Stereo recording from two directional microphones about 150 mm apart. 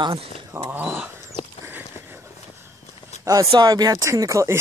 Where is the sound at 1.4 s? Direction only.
35° left (ahead or behind).